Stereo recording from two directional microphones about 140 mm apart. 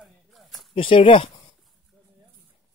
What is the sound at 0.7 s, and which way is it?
Speech, 40° left (ahead or behind).